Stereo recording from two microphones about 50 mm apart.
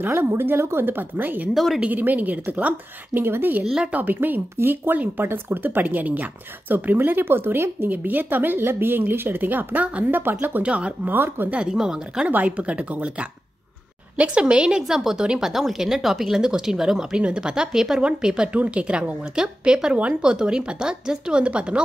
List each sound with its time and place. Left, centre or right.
0.0 s speech: right
1.5 s a woman's voice: centre
1.8 s speech: right
3.2 s speech: right
3.9 s speech: right
7.9 s speech: right
10.6 s a woman's voice: right
11.1 s speech: right
11.5 s speech: centre
12.3 s a woman's voice: right